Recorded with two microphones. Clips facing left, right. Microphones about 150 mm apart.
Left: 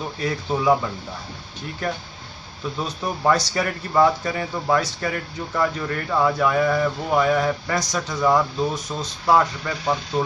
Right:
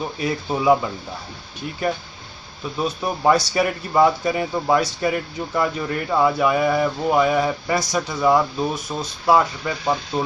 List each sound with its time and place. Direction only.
0.2 s speech: 15° right (ahead or behind)
2.8 s speech: 15° right (ahead or behind)